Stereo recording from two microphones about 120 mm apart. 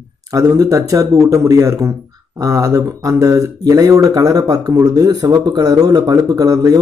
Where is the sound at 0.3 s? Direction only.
30° right (ahead or behind).